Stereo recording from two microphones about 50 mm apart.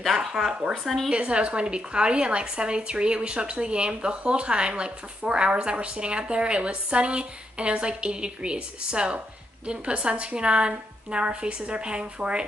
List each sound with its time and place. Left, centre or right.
0.1 s speech: centre
1.1 s a woman's voice: right